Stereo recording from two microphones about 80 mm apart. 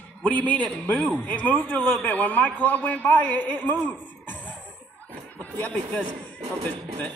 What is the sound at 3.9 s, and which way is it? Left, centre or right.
Cough, left.